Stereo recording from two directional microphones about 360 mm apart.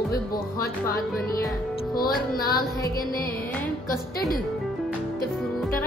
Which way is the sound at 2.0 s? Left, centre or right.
Left.